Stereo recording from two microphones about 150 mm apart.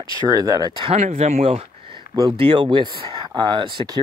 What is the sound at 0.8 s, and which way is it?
Speech, 50° right (ahead or behind).